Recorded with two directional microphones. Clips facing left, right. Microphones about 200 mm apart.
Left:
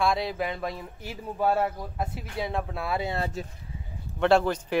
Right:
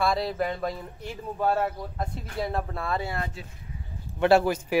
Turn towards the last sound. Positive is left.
turn(degrees=-10)  # may be behind; listen again after turning